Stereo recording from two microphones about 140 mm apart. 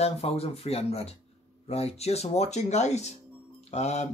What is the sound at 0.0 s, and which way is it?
Speech, 45° left (ahead or behind).